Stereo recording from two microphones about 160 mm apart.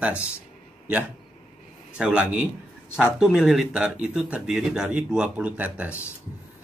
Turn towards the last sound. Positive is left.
turn(degrees=-10)  # may be behind; listen again after turning